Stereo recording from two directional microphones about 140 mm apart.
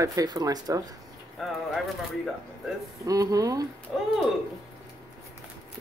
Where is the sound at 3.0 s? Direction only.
25° right (ahead or behind).